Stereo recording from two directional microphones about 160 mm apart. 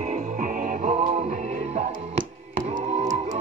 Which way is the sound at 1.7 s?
50° right (ahead or behind).